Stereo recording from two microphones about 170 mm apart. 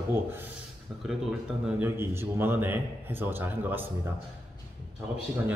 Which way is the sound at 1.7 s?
15° right (ahead or behind).